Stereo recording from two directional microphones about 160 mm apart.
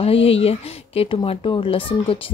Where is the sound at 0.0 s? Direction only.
35° left (ahead or behind).